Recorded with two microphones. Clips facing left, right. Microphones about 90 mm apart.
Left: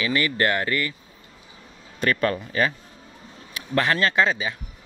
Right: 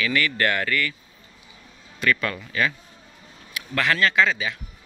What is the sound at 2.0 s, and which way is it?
Speech, 35° left (ahead or behind).